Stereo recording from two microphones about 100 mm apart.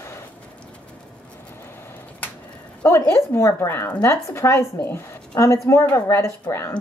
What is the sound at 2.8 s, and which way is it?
A child's voice, 30° left (ahead or behind).